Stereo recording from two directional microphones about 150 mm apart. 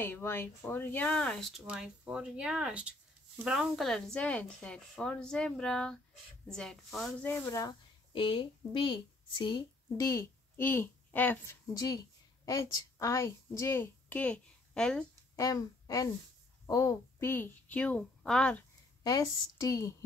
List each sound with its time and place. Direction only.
0.0 s speech: 15° left (ahead or behind)
1.7 s speech: 5° right (ahead or behind)
7.2 s speech: 15° left (ahead or behind); by 9.0 s 35° left (ahead or behind)
9.5 s a woman's voice: 20° left (ahead or behind)
12.4 s a woman's voice: 20° left (ahead or behind); by 15.0 s 5° left (ahead or behind)
15.3 s a woman's voice: 20° left (ahead or behind); by 18.6 s 5° left (ahead or behind)
19.0 s a woman's voice: 20° left (ahead or behind)